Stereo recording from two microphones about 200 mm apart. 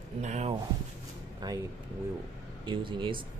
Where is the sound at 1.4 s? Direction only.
20° right (ahead or behind).